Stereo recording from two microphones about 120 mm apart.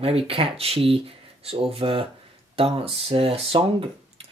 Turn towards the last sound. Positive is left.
turn(degrees=-50)  # may be behind; listen again after turning